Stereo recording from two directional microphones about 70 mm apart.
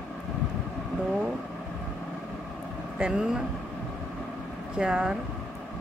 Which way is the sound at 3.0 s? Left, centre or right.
Centre.